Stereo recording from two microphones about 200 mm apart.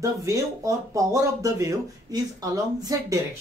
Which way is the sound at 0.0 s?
15° right (ahead or behind).